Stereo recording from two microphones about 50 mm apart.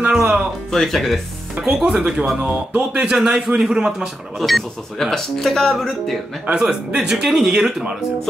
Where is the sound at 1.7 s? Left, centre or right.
Centre.